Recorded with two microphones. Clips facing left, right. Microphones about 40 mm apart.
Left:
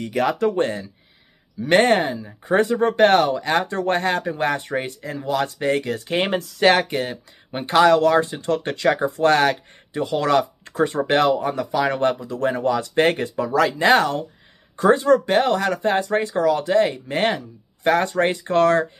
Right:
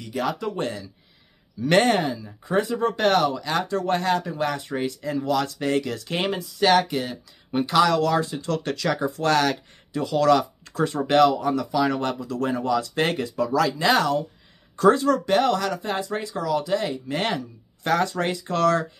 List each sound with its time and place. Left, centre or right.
0.0 s speech: left
1.6 s speech: left
2.5 s speech: left
5.0 s speech: left
6.1 s speech: left
12.5 s speech: left
14.8 s speech: left